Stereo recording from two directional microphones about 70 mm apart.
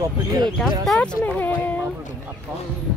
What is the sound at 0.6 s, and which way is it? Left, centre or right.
Speech, centre.